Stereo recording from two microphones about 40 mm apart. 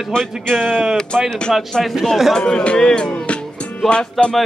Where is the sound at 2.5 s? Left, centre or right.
Left.